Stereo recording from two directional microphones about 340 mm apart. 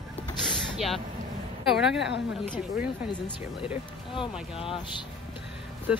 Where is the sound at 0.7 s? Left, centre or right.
Centre.